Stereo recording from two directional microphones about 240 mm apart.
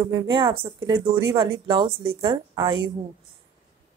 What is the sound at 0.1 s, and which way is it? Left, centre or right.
A woman's voice, centre.